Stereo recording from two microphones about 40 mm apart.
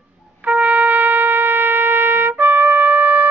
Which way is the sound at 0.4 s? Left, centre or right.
Right.